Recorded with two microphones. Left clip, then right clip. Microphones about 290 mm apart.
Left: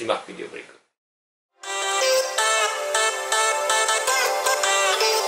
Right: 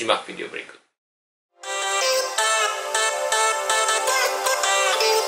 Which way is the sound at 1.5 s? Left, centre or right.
Centre.